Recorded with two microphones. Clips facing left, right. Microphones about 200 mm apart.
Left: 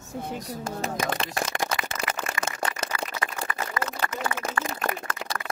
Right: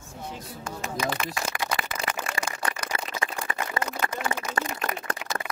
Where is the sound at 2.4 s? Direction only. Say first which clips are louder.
Left 2 dB; 25° left (ahead or behind).